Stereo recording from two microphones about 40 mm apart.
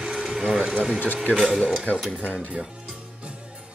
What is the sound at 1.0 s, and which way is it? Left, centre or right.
Speech, left.